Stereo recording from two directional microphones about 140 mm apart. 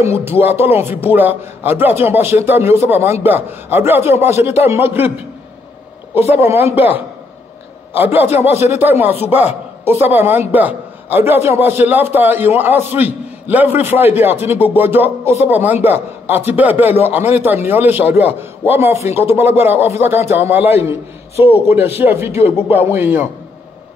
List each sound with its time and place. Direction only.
0.0 s a man's voice: 15° right (ahead or behind)
6.1 s a man's voice: 15° right (ahead or behind)
8.0 s a man's voice: 15° right (ahead or behind)